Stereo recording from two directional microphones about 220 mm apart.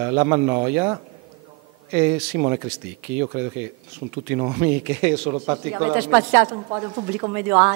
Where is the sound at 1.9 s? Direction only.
25° right (ahead or behind).